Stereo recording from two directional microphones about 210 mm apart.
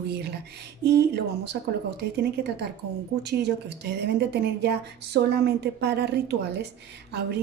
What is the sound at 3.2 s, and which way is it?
A woman's voice, 50° right (ahead or behind).